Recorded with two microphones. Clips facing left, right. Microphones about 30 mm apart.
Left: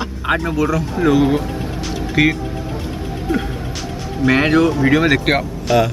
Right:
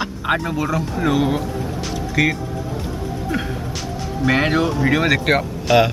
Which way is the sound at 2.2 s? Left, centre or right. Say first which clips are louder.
Left 3 dB; left.